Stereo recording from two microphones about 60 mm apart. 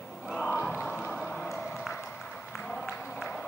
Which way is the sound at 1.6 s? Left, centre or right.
Centre.